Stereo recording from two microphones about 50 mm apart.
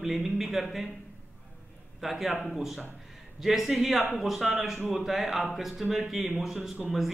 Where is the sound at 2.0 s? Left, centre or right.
Centre.